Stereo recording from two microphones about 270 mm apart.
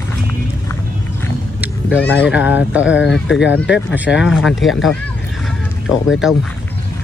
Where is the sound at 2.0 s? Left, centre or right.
Centre.